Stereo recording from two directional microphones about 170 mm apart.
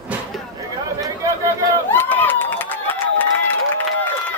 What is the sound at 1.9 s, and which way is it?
Run, 10° left (ahead or behind).